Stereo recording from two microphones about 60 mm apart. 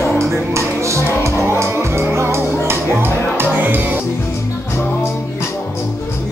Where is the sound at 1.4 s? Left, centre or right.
Right.